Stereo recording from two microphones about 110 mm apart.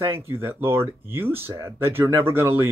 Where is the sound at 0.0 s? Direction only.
20° right (ahead or behind).